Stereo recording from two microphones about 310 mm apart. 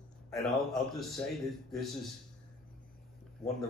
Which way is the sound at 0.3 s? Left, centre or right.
Centre.